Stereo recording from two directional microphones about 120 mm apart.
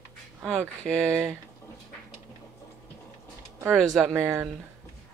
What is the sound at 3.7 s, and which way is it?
Speech, 5° left (ahead or behind).